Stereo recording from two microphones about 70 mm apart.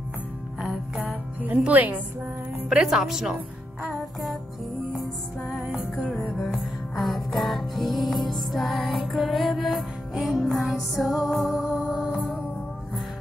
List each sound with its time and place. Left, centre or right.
0.6 s music: centre
1.0 s music: right
1.6 s a woman's voice: right
2.7 s speech: centre
5.4 s music: centre